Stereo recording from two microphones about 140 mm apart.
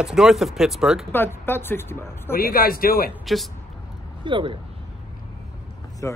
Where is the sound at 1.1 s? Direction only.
15° left (ahead or behind).